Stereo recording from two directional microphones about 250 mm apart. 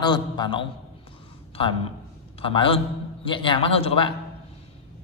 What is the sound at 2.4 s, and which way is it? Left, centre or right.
A man's voice, left.